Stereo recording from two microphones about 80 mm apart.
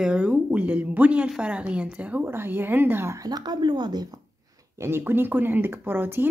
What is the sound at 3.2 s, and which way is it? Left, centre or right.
Speech, right.